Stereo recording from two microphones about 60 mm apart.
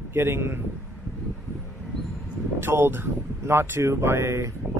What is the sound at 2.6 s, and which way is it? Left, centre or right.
A man's voice, right.